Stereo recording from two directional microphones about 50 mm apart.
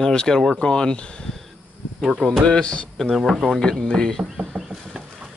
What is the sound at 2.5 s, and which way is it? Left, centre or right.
Speech, left.